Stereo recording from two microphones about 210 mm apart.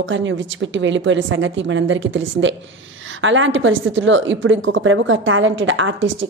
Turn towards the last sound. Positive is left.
turn(degrees=-65)  # may be behind; listen again after turning